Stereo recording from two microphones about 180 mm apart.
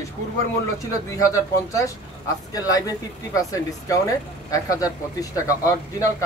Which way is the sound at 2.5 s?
20° left (ahead or behind).